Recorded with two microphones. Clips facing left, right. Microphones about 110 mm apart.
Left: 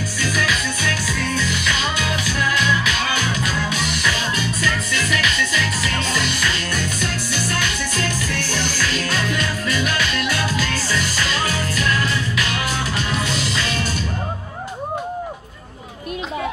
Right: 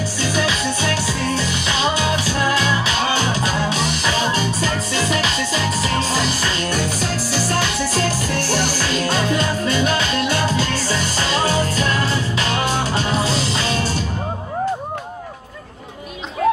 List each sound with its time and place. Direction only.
0.2 s music: 30° right (ahead or behind)